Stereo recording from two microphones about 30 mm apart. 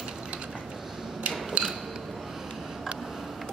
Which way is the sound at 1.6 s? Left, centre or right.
Right.